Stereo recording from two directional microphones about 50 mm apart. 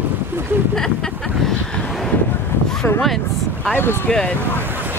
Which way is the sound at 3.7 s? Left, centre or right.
Left.